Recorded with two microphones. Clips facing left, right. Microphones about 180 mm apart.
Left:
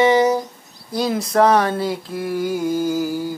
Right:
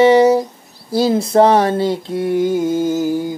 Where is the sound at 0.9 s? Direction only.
30° right (ahead or behind).